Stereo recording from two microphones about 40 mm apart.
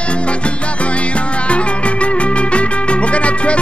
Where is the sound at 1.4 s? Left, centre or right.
Left.